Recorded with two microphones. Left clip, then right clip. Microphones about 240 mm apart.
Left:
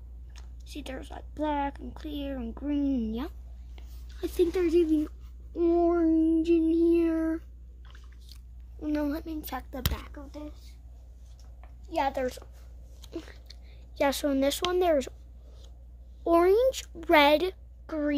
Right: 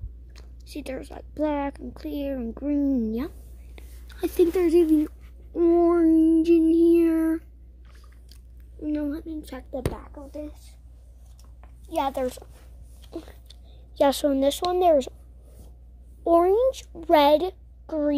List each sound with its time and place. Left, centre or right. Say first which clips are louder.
0.3 s a woman's voice: right 5 dB; centre
3.2 s a sound: right 5 dB; centre
4.2 s a woman's voice: right 5 dB; centre
5.5 s child singing: right 5 dB; centre
8.8 s a child's voice: right 2 dB; left
9.9 s speech: right 2 dB; left
11.9 s a woman's voice: right 3 dB; centre
13.1 s a sound: right 2 dB; centre
14.7 s speech: right 8 dB; centre
16.3 s a child's voice: right 3 dB; centre